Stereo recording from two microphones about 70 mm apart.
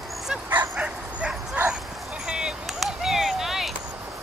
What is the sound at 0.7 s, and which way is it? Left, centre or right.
Bow-wow, centre.